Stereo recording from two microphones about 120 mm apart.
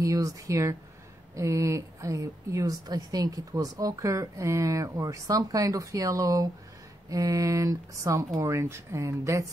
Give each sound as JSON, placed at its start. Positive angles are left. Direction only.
{"t": 0.0, "sound": "a woman's voice", "side_deg": -30}